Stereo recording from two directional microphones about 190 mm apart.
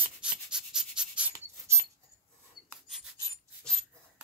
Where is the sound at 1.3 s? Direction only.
15° right (ahead or behind).